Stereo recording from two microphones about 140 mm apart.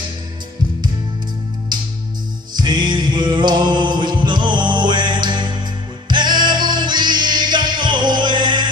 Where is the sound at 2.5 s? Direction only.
30° right (ahead or behind).